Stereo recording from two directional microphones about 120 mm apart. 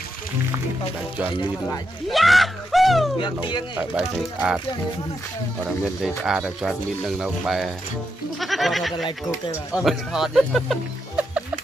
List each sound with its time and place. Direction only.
2.0 s speech: centre (ahead or behind)
3.7 s speech: 15° right (ahead or behind)
5.7 s speech: 5° right (ahead or behind)